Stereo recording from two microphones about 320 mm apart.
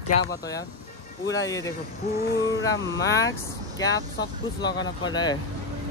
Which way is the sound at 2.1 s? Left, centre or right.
Left.